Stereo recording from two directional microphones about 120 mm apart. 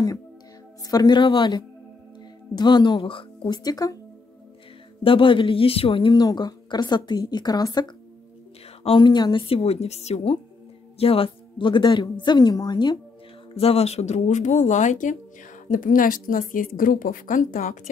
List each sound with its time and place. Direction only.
0.8 s a woman's voice: 35° left (ahead or behind)
5.0 s a woman's voice: 45° left (ahead or behind)
8.8 s a woman's voice: 40° left (ahead or behind)
13.5 s a woman's voice: 55° left (ahead or behind); by 17.7 s 90° left